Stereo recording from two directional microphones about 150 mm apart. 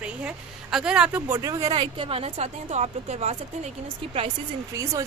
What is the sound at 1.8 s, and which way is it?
A woman's voice, 35° right (ahead or behind).